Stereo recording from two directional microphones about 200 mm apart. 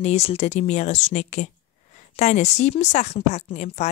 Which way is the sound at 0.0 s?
30° left (ahead or behind).